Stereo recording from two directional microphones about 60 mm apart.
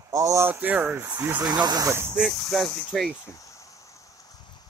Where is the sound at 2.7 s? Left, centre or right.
Centre.